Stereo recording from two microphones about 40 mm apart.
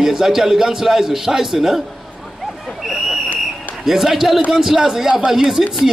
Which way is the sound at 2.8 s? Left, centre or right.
Centre.